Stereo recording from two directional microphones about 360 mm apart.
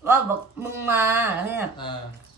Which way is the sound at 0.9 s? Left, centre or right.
Centre.